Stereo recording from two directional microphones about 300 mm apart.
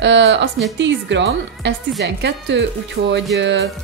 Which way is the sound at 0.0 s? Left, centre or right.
Right.